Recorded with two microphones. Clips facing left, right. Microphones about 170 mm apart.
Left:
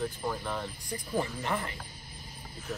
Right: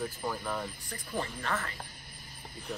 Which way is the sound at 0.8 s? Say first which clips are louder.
Left 4 dB; 15° left (ahead or behind).